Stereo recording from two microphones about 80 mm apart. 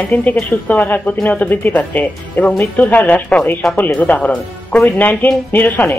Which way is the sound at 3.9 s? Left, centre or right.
Centre.